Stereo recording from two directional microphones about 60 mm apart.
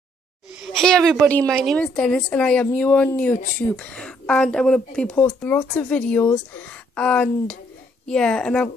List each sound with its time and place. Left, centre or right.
0.7 s a woman's voice: centre
5.4 s a woman's voice: left